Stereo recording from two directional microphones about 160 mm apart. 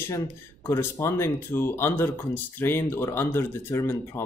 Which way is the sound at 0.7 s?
15° left (ahead or behind).